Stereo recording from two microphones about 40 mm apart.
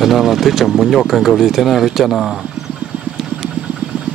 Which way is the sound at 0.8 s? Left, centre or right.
Centre.